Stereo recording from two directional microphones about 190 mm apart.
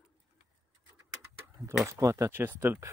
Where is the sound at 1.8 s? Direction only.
15° right (ahead or behind).